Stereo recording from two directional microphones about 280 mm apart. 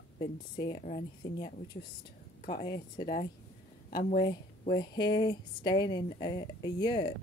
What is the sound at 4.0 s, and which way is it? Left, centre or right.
Speech, left.